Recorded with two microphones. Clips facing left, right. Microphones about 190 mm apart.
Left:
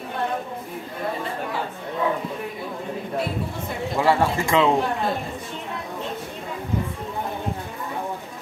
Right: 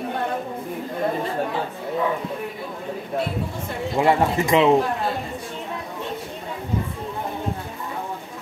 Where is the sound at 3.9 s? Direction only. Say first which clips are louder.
Right 2 dB; 20° right (ahead or behind).